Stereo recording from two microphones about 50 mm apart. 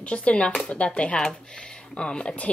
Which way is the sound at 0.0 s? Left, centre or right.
Left.